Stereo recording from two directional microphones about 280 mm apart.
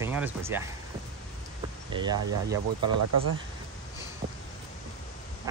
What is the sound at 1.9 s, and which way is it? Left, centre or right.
Speech, centre.